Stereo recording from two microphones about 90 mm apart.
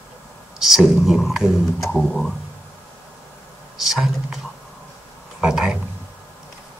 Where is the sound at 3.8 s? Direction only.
5° right (ahead or behind).